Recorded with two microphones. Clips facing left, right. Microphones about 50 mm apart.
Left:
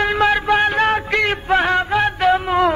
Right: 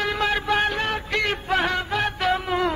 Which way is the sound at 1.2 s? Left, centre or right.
Left.